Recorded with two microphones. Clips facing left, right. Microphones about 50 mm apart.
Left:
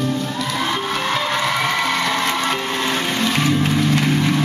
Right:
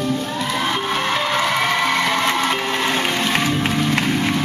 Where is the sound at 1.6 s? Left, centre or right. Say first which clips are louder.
Right 1 dB; centre.